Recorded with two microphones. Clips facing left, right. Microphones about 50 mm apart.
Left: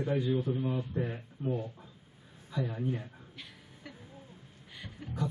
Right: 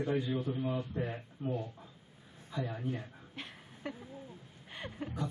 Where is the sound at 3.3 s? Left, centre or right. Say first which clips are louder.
Right 3 dB; right.